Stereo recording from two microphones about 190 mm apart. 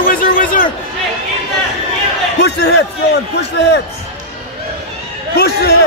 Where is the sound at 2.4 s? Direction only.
60° left (ahead or behind).